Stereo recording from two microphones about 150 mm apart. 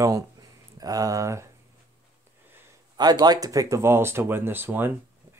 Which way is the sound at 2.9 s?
25° right (ahead or behind).